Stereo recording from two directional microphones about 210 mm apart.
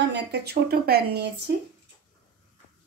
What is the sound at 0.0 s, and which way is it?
Speech, 55° right (ahead or behind).